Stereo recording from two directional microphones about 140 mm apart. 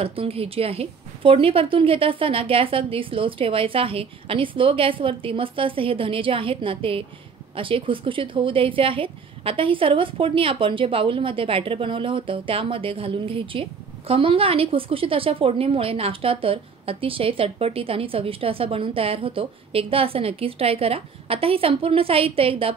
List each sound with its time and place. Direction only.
0.0 s a woman's voice: 45° right (ahead or behind)